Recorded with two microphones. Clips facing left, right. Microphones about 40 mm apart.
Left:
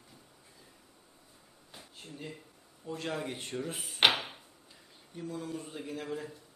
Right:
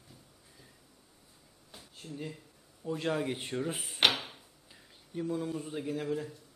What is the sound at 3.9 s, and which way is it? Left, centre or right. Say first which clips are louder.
Drawer open or close: left 2 dB; centre.